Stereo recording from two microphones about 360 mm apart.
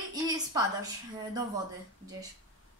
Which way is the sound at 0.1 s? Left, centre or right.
Centre.